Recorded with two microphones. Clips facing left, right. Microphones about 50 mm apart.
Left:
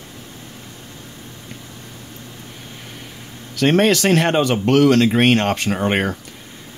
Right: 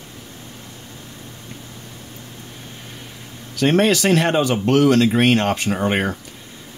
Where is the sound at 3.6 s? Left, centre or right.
Left.